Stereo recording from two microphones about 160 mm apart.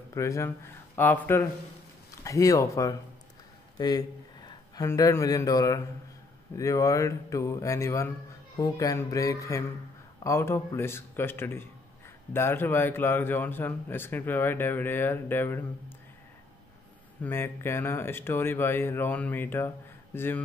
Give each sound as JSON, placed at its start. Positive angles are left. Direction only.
{"t": 0.1, "sound": "speech", "side_deg": 20}
{"t": 17.2, "sound": "speech", "side_deg": 15}